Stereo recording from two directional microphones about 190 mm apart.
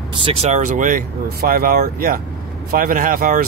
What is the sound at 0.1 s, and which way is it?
Speech, 30° right (ahead or behind).